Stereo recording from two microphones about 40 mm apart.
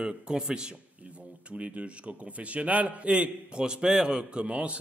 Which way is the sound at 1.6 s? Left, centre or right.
Right.